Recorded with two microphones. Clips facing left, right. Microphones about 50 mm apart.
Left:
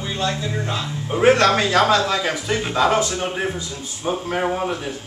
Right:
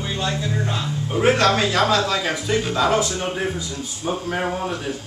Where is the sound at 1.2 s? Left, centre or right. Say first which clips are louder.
Left 3 dB; centre.